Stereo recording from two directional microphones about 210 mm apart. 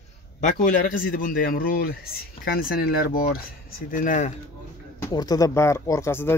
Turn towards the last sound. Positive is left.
turn(degrees=10)  # may be behind; listen again after turning